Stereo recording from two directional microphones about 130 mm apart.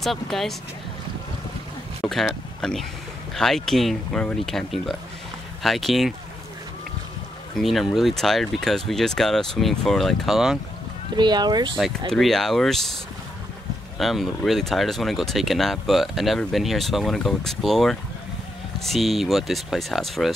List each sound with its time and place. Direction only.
0.0 s speech: centre (ahead or behind)
2.6 s speech: 5° left (ahead or behind)
7.5 s speech: centre (ahead or behind)
11.1 s speech: 35° right (ahead or behind)
12.1 s speech: 5° left (ahead or behind)
13.9 s speech: centre (ahead or behind)